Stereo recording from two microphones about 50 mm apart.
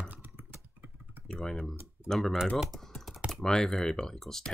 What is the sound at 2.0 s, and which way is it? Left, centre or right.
Computer keyboard, centre.